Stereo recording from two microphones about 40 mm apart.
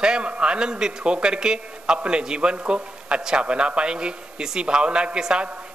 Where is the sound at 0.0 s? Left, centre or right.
Right.